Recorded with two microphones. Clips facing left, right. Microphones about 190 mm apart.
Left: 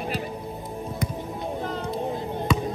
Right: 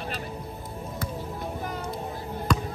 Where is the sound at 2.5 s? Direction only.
5° left (ahead or behind).